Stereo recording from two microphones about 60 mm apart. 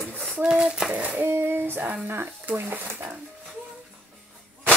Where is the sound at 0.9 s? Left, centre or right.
Right.